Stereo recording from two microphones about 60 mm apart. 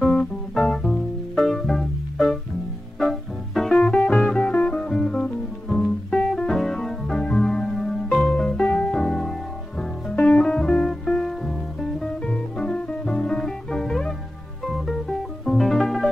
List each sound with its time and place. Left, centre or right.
0.0 s music: centre
3.7 s music: centre
7.7 s music: centre
8.2 s music: centre